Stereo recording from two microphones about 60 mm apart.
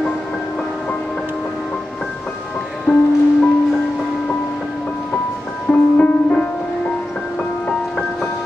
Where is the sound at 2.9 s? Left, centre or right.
Left.